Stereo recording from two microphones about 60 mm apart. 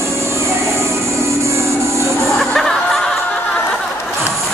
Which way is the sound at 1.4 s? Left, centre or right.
Right.